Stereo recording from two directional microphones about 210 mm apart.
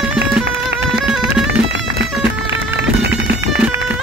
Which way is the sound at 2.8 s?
50° right (ahead or behind).